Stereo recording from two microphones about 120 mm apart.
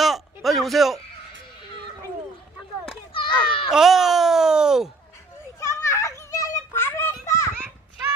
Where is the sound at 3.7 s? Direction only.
5° right (ahead or behind).